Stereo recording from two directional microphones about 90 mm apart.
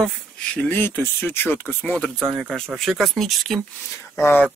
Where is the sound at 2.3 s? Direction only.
5° left (ahead or behind).